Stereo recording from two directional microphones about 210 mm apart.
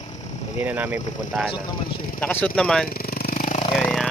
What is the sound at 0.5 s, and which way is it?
Speech, 5° right (ahead or behind).